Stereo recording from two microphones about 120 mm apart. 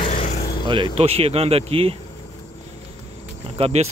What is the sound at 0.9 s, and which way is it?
Speech, 55° right (ahead or behind).